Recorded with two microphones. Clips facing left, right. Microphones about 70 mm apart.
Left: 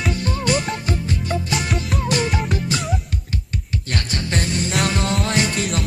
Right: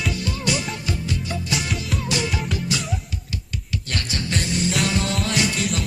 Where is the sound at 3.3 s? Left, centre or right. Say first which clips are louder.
Left 2 dB; left.